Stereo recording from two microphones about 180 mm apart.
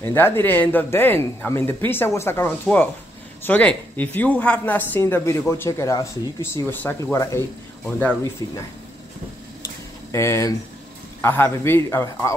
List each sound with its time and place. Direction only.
0.1 s speech: 10° left (ahead or behind)
10.1 s speech: 15° left (ahead or behind)